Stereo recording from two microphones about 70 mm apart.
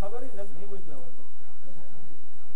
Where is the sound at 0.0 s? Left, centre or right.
Centre.